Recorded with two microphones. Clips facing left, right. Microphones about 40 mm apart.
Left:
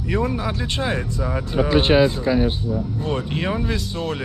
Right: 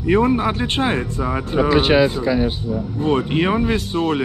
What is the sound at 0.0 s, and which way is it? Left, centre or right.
Speech, right.